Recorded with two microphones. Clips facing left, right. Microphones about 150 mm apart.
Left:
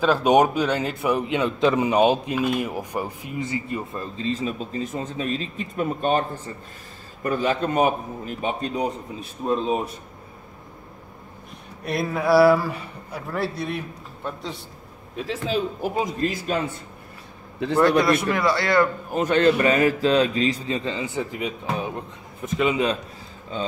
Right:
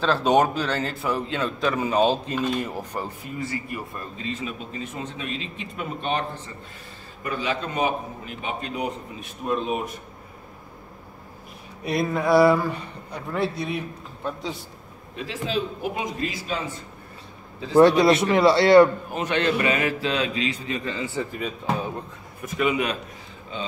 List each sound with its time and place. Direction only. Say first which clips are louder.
0.0 s a man's voice: left 2 dB; 10° left (ahead or behind); by 9.8 s 30° left (ahead or behind)
11.8 s a man's voice: right 1 dB; centre (ahead or behind)
15.1 s a man's voice: left 2 dB; 45° left (ahead or behind)
18.0 s a man's voice: right 3 dB; 25° right (ahead or behind)
19.1 s a man's voice: left 6 dB; 40° left (ahead or behind); by 22.9 s 25° left (ahead or behind)